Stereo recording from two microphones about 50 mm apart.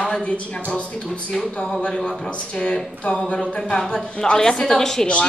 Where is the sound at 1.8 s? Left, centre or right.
Left.